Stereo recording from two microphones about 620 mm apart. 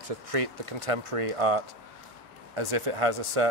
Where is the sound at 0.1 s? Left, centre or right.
Right.